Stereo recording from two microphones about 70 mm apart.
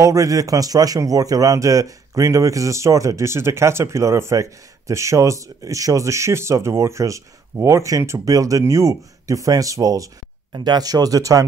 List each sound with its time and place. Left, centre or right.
0.0 s a man's voice: right
10.5 s speech: right